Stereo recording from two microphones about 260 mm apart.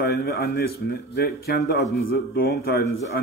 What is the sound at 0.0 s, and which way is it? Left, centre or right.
Speech, left.